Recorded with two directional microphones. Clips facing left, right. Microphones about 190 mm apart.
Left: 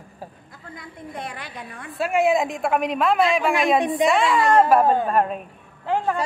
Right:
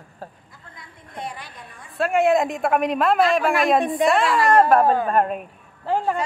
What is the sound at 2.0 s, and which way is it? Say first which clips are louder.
A woman's voice: right 1 dB; centre (ahead or behind).